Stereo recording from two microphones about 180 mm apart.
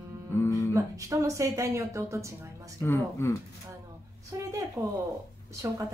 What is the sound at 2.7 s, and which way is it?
Humming, 15° left (ahead or behind).